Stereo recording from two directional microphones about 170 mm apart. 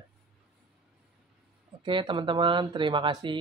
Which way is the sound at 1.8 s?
30° right (ahead or behind).